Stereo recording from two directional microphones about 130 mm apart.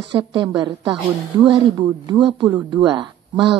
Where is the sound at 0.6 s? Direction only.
35° right (ahead or behind).